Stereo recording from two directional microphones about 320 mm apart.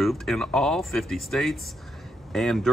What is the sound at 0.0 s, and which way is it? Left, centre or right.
Speech, centre.